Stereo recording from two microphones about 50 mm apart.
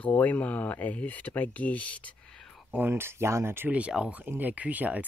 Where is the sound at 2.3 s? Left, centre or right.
Centre.